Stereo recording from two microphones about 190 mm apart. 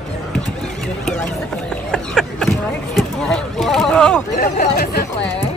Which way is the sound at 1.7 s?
5° left (ahead or behind).